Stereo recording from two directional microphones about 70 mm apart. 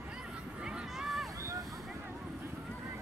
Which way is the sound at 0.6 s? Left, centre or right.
Centre.